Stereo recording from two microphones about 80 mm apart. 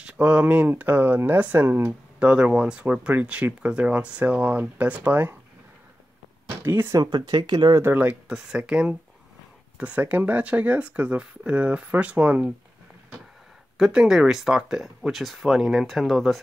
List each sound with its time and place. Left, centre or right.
0.0 s speech: centre
6.6 s speech: right
7.0 s speech: right
7.8 s speech: right
13.7 s speech: centre